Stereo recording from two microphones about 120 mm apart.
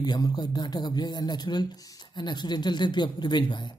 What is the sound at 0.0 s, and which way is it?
Speech, 35° left (ahead or behind).